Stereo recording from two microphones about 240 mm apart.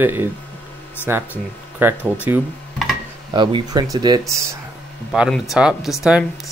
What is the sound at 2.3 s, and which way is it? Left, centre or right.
Guitar, centre.